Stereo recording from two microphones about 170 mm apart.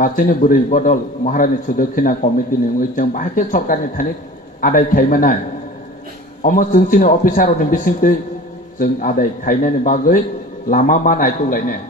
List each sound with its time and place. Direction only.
0.0 s a man's voice: 55° left (ahead or behind)
6.4 s a man's voice: 55° left (ahead or behind)